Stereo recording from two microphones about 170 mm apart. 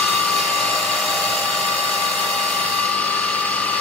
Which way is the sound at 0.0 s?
5° left (ahead or behind).